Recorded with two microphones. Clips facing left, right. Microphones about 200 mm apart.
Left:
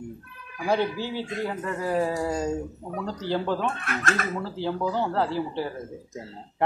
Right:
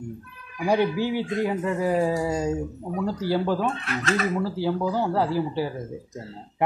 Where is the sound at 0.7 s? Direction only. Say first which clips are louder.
Right 3 dB; 15° right (ahead or behind).